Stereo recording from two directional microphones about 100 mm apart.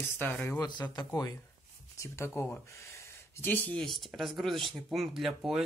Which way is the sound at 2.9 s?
20° left (ahead or behind).